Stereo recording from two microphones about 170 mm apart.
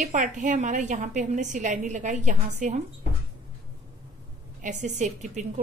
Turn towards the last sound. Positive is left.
turn(degrees=-45)  # may be behind; listen again after turning